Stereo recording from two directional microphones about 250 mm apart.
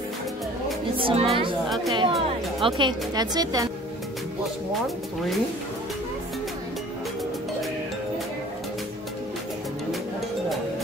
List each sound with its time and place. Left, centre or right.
0.9 s speech: right
4.8 s speech: centre